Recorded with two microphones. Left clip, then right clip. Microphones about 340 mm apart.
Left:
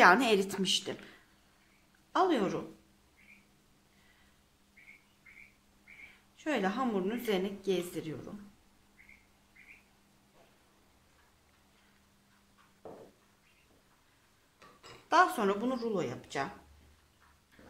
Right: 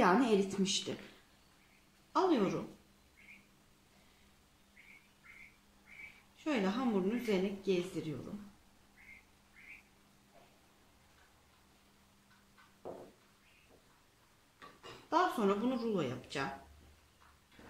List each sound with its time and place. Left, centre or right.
0.0 s a woman's voice: left
2.1 s a woman's voice: left
6.3 s a woman's voice: left
15.0 s a woman's voice: left